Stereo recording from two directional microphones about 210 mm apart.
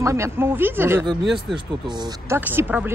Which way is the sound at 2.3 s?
10° right (ahead or behind).